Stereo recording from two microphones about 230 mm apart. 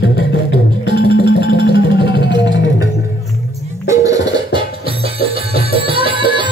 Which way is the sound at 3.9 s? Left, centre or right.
Centre.